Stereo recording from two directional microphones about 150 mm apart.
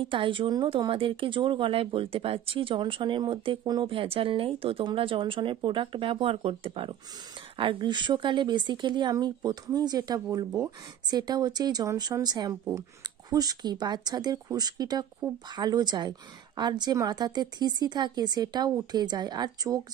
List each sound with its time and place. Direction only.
0.1 s speech: 35° right (ahead or behind)